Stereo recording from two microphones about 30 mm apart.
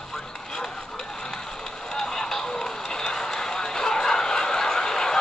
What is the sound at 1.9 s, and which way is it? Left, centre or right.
Vehicle, left.